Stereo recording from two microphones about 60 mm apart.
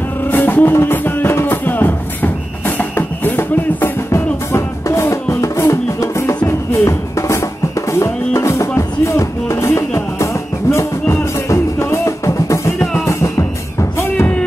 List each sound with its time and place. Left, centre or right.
0.3 s music: left